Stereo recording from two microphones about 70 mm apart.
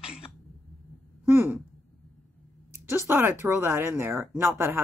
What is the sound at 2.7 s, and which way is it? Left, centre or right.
Speech, right.